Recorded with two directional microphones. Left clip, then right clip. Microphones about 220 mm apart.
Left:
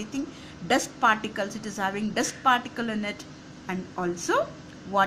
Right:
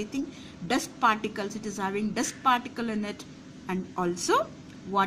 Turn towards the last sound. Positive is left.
turn(degrees=-5)  # may be behind; listen again after turning